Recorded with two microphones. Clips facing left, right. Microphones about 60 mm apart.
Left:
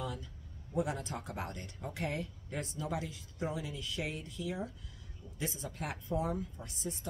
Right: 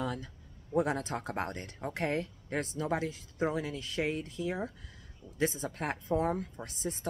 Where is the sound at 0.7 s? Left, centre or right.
Right.